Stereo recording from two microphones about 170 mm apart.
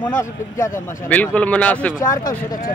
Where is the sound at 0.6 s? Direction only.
10° left (ahead or behind).